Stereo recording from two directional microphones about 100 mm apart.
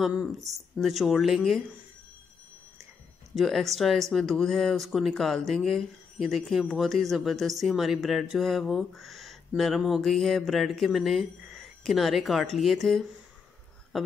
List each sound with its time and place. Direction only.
0.7 s speech: centre (ahead or behind)
3.3 s speech: centre (ahead or behind)